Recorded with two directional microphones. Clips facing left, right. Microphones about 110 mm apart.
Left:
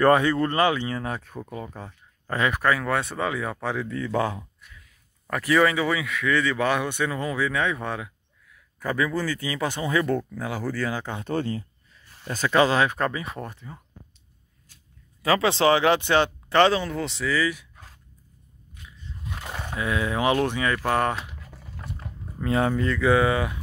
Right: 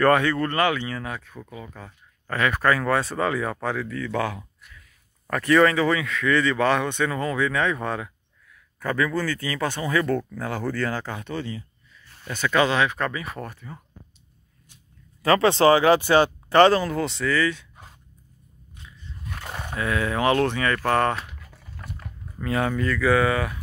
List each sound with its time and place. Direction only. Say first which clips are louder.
0.0 s speech: left 1 dB; 25° left (ahead or behind)
1.9 s a sound: left 1 dB; 20° left (ahead or behind)
2.5 s speech: right 4 dB; 5° left (ahead or behind)
3.6 s speech: right 1 dB; 20° left (ahead or behind)
5.3 s a man's voice: right 2 dB; 5° left (ahead or behind)
11.2 s speech: left 4 dB; 45° left (ahead or behind)
12.3 s speech: left 1 dB; 35° left (ahead or behind)
13.2 s speech: even; 20° left (ahead or behind)
15.2 s speech: right 3 dB; 5° left (ahead or behind)
19.7 s speech: right 1 dB; 15° left (ahead or behind)
21.8 s speech: left 1 dB; 25° left (ahead or behind)